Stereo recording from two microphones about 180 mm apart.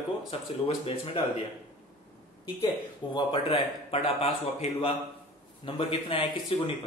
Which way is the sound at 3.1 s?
25° left (ahead or behind).